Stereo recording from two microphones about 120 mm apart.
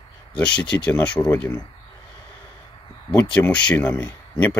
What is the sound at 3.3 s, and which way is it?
Speech, 10° left (ahead or behind).